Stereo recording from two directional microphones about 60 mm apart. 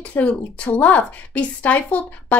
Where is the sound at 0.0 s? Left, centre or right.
Left.